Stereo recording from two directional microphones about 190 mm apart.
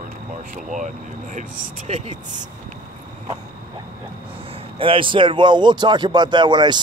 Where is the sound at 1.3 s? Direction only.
40° right (ahead or behind).